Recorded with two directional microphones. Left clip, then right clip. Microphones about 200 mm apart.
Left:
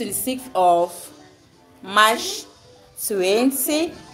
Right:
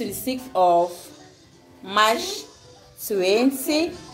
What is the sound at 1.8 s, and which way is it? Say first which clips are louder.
A woman's voice: left 3 dB; 10° left (ahead or behind).